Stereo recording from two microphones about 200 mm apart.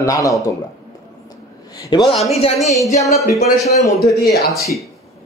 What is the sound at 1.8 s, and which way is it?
Speech, 20° left (ahead or behind).